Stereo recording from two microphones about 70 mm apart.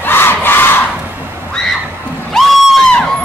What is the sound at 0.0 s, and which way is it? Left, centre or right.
Crowd, left.